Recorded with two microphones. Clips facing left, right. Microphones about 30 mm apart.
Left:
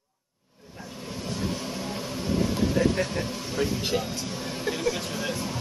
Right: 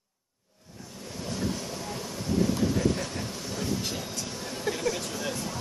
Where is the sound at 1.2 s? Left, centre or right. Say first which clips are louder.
Left 1 dB; centre.